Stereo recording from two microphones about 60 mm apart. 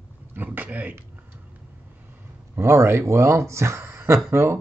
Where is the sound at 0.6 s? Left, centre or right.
Right.